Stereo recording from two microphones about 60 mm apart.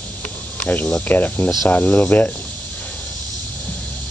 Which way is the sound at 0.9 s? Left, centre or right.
Left.